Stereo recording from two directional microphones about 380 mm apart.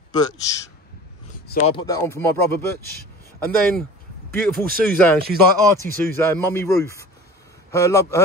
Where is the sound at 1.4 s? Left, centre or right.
Left.